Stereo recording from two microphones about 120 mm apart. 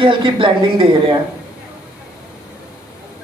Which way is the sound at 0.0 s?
45° right (ahead or behind).